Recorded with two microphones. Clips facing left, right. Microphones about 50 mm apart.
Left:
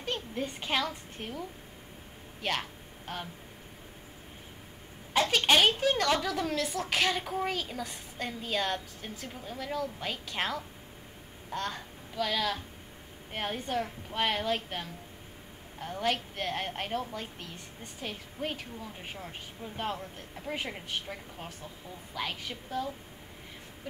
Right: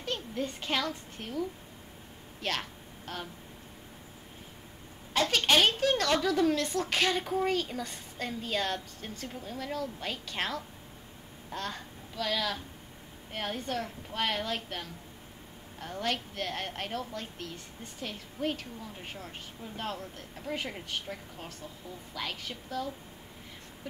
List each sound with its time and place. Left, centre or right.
0.0 s a woman's voice: centre
5.1 s a woman's voice: centre